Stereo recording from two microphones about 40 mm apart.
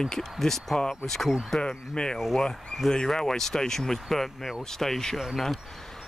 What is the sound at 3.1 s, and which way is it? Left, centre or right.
Speech, centre.